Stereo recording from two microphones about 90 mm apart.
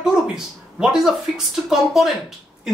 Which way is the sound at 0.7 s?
5° right (ahead or behind).